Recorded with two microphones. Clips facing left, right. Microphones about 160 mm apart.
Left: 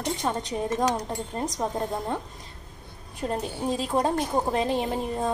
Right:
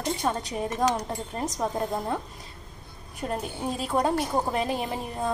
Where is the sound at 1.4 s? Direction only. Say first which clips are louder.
Right 1 dB; centre (ahead or behind).